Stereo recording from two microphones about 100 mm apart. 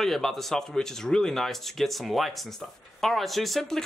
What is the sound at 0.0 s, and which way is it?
Speech, centre (ahead or behind).